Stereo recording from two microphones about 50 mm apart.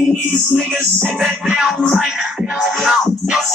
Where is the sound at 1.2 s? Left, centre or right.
Centre.